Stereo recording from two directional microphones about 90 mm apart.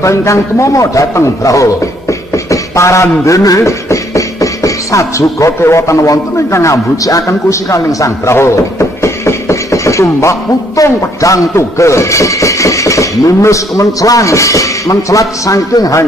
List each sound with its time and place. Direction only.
0.0 s speech: 35° left (ahead or behind)
2.5 s a sound: 35° left (ahead or behind)
10.8 s speech: 40° left (ahead or behind)